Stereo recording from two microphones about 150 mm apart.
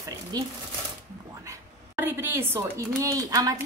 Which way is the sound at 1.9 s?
15° right (ahead or behind).